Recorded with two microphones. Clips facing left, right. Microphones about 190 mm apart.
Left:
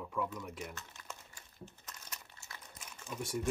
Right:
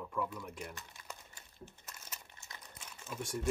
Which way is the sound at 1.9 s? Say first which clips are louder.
Left 1 dB; 5° right (ahead or behind).